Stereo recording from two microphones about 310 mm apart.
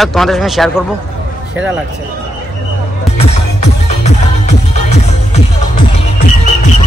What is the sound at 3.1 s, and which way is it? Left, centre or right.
Music, left.